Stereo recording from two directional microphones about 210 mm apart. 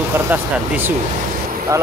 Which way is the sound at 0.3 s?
10° right (ahead or behind).